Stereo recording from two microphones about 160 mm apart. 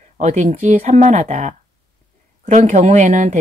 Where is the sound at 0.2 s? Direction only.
45° right (ahead or behind).